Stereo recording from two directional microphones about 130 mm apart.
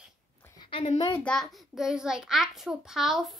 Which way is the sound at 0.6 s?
45° left (ahead or behind).